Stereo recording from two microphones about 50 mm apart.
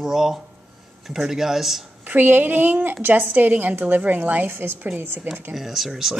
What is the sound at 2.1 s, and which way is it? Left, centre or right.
A woman's voice, right.